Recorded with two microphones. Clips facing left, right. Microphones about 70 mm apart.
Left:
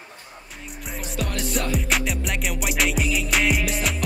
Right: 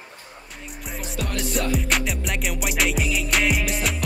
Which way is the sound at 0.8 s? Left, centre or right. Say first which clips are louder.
Left 1 dB; centre.